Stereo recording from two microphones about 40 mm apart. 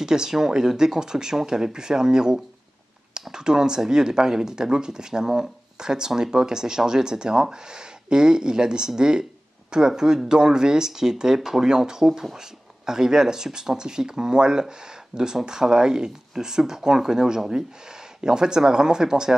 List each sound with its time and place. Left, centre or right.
0.0 s speech: centre